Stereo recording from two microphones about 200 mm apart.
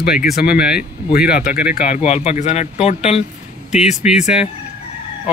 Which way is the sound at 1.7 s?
40° left (ahead or behind).